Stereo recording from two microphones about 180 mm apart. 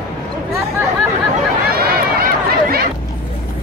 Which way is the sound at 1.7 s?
55° right (ahead or behind).